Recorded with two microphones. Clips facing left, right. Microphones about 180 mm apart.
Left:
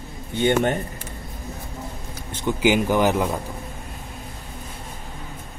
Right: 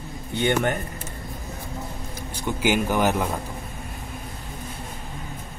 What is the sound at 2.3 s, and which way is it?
Speech, 15° left (ahead or behind).